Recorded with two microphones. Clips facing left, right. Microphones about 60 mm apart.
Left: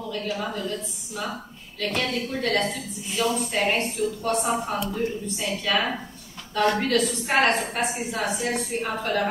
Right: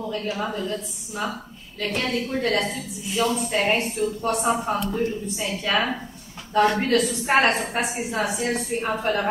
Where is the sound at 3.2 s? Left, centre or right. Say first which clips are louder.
Right 1 dB; right.